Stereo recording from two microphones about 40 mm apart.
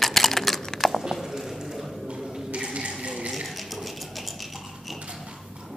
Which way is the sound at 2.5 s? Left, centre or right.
Right.